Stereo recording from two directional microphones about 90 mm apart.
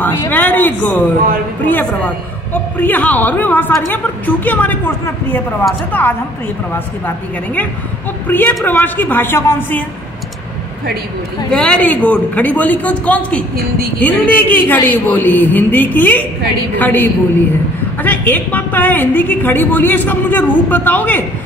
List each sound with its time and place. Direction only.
0.3 s a woman's voice: 20° left (ahead or behind)
8.3 s a woman's voice: 20° left (ahead or behind)
11.5 s a woman's voice: 10° left (ahead or behind)